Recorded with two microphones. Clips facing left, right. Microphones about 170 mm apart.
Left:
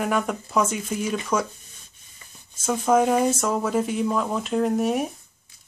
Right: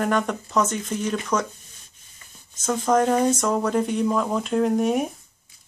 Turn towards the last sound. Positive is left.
turn(degrees=0)  # may be behind; listen again after turning